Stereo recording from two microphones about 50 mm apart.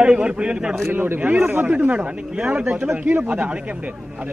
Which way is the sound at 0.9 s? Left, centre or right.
Right.